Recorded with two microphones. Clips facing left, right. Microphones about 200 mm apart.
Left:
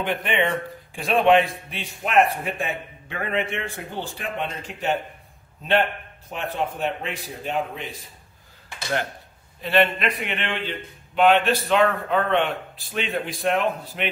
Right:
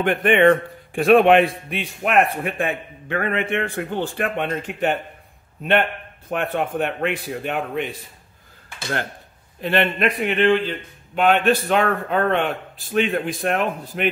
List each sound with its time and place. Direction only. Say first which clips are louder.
0.0 s a man's voice: right 8 dB; 55° right (ahead or behind)
9.6 s a man's voice: right 1 dB; 50° right (ahead or behind)